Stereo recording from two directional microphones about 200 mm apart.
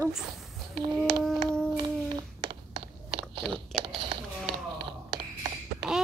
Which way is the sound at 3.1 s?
25° right (ahead or behind).